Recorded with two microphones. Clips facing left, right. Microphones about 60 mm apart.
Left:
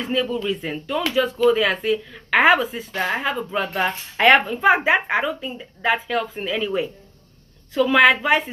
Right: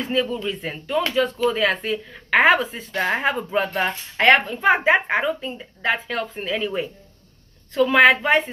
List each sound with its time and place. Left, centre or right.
0.0 s speech: centre
3.2 s speech: right
3.4 s speech: centre